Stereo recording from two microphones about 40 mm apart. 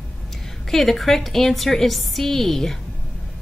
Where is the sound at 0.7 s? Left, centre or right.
Centre.